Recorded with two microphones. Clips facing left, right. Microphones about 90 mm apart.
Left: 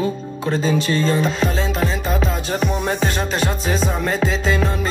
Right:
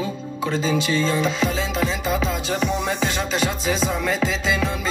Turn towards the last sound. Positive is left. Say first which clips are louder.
# left 3 dB
turn(degrees=40)  # may be behind; listen again after turning